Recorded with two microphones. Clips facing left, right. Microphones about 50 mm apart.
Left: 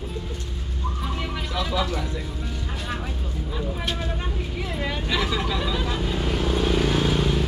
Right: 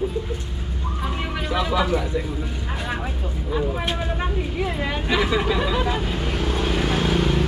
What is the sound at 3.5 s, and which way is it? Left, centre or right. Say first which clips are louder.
Vehicle: right 5 dB; centre.